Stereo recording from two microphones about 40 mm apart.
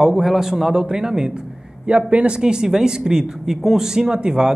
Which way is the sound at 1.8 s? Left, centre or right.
Right.